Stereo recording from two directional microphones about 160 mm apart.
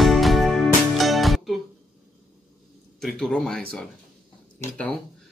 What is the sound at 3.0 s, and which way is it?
Speech, 5° left (ahead or behind).